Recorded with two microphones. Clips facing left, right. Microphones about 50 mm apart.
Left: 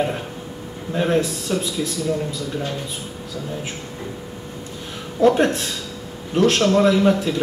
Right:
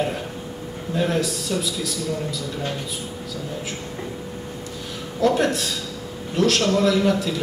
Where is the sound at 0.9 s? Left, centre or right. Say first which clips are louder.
Left 3 dB; left.